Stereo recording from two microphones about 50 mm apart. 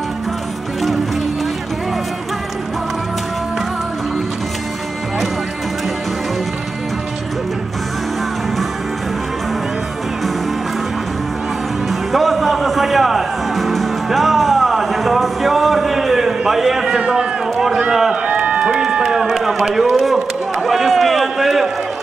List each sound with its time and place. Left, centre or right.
11.9 s music: centre
17.0 s run: right
17.7 s run: centre
18.2 s run: right
18.8 s a sound: centre
19.9 s run: centre